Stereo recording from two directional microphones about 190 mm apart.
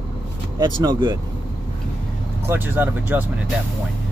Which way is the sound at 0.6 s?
20° right (ahead or behind).